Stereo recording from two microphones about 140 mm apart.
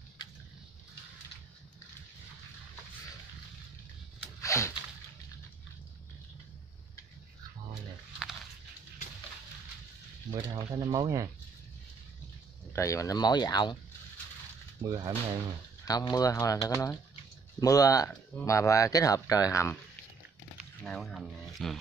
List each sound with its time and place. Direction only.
4.4 s a sound: 20° left (ahead or behind)
10.3 s speech: 30° right (ahead or behind)
12.7 s speech: 20° left (ahead or behind)
14.8 s speech: 30° right (ahead or behind)
15.8 s speech: 25° left (ahead or behind)
20.8 s speech: centre (ahead or behind)